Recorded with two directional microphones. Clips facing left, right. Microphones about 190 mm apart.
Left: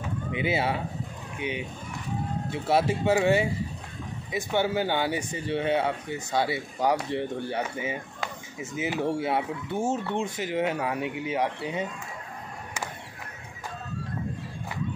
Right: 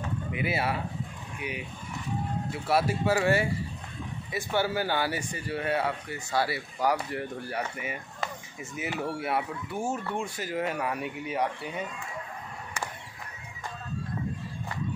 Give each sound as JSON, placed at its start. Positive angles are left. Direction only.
{"t": 0.3, "sound": "speech", "side_deg": 25}